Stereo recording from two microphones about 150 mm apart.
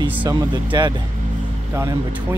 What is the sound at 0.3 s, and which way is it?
Speech, 30° right (ahead or behind).